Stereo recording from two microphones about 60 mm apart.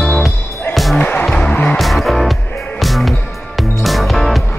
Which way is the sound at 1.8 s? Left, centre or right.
Centre.